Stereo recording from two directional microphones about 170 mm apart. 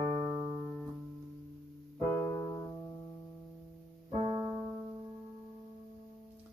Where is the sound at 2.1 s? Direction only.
15° left (ahead or behind).